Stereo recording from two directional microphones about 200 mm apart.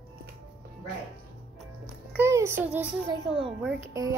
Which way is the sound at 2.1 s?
10° right (ahead or behind).